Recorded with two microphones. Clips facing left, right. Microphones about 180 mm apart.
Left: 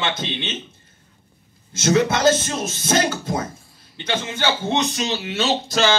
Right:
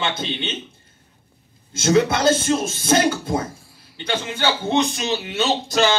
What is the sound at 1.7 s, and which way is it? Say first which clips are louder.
Speech: right 1 dB; 30° right (ahead or behind).